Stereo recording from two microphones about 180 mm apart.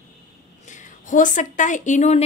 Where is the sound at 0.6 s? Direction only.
45° left (ahead or behind).